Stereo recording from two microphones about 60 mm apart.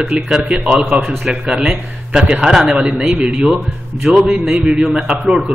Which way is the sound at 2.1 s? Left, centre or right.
Centre.